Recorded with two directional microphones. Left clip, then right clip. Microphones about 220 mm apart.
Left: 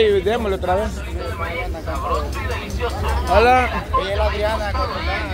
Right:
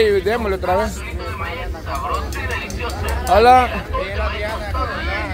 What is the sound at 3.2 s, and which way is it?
Speech, 5° right (ahead or behind).